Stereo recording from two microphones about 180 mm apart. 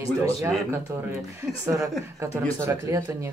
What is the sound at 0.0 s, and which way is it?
Speech, 15° right (ahead or behind).